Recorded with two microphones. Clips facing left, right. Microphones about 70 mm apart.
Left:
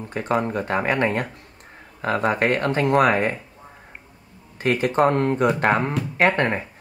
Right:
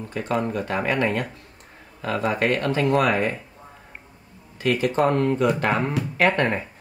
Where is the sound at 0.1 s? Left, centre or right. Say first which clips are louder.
Left 2 dB; left.